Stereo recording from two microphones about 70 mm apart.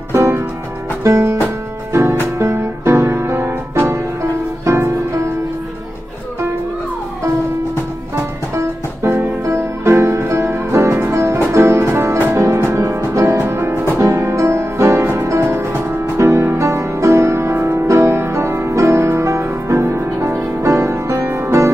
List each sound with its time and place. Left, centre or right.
0.1 s music: right
8.5 s music: right